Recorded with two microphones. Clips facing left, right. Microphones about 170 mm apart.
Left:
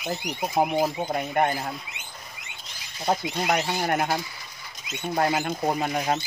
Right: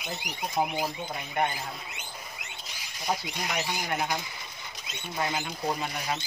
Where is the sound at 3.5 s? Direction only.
55° left (ahead or behind).